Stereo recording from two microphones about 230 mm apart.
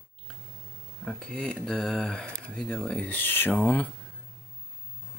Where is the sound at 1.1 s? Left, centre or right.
Centre.